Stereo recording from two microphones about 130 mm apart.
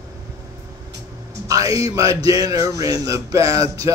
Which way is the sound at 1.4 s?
25° right (ahead or behind).